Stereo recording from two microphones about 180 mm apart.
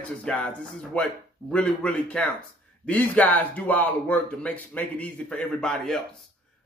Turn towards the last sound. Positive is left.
turn(degrees=5)  # may be behind; listen again after turning